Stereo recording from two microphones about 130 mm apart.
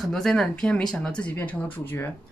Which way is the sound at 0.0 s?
5° left (ahead or behind).